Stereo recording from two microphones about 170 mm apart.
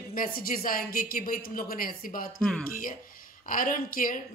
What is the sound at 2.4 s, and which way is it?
Speech, 5° left (ahead or behind).